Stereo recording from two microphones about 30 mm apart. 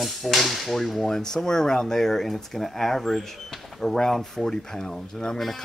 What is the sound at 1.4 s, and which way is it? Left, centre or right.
Speech, centre.